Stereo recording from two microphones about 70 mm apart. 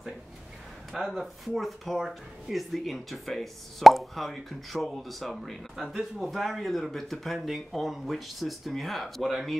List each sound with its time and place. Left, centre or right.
0.9 s speech: centre